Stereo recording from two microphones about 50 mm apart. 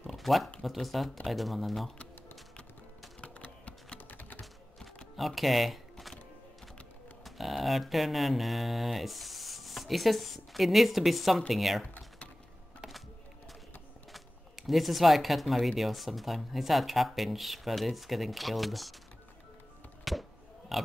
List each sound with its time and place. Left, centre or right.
0.0 s a sound: centre
0.6 s speech: centre
3.2 s typing: left
5.1 s music: centre
7.2 s speech: centre
14.1 s speech: centre
20.1 s a sound: centre